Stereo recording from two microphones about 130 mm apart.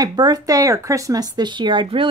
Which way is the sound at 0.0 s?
30° right (ahead or behind).